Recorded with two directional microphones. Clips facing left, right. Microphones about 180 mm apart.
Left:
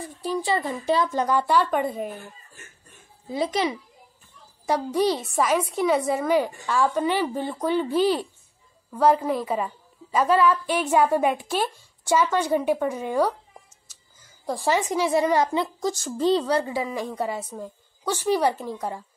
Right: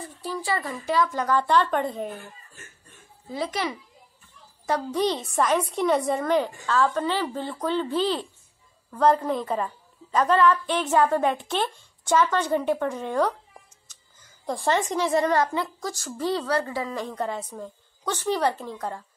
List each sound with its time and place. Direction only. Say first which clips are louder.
0.0 s speech: left 4 dB; 15° left (ahead or behind)
1.3 s speech: even; 10° left (ahead or behind)
3.3 s speech: left 4 dB; 20° left (ahead or behind)
14.4 s speech: left 1 dB; 5° left (ahead or behind)